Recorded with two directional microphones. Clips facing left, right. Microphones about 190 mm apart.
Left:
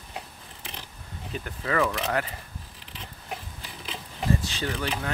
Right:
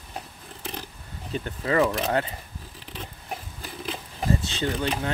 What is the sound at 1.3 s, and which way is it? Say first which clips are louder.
Speech: right 4 dB; 30° right (ahead or behind).